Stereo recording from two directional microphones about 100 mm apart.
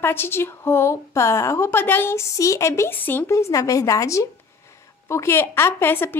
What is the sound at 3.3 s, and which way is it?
A woman's voice, 30° left (ahead or behind).